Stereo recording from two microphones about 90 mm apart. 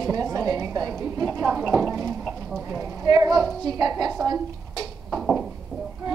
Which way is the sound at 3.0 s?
45° right (ahead or behind).